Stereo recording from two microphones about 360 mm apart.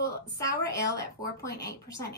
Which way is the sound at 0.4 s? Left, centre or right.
Centre.